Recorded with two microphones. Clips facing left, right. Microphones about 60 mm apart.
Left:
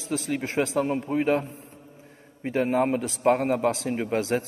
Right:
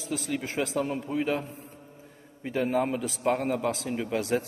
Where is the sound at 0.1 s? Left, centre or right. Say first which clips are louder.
Left 4 dB; left.